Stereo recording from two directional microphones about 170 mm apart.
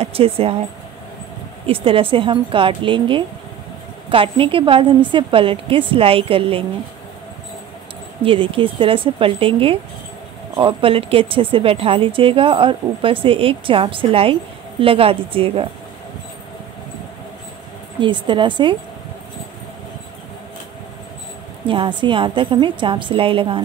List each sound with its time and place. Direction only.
0.0 s speech: 35° right (ahead or behind)
1.7 s a woman's voice: 30° right (ahead or behind)
8.2 s a woman's voice: 30° right (ahead or behind)
18.0 s a woman's voice: 30° right (ahead or behind)
21.6 s a woman's voice: 30° right (ahead or behind)